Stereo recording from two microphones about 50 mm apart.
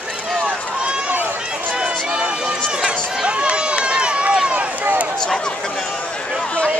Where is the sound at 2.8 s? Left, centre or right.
Centre.